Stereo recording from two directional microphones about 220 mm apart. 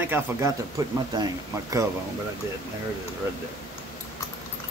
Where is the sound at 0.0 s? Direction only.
10° right (ahead or behind).